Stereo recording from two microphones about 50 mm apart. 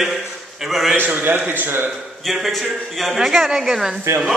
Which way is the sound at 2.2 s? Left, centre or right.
Centre.